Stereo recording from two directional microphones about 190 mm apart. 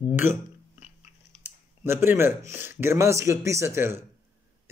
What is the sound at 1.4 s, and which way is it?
Speech, 15° right (ahead or behind).